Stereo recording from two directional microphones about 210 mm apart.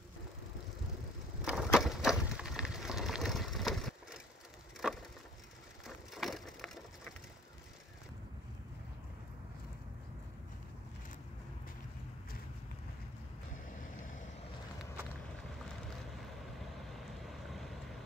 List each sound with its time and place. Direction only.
1.4 s skateboard: 5° right (ahead or behind)
1.8 s a sound: centre (ahead or behind)
5.9 s wood: centre (ahead or behind)
13.7 s boat: 40° left (ahead or behind)
16.9 s vehicle: centre (ahead or behind)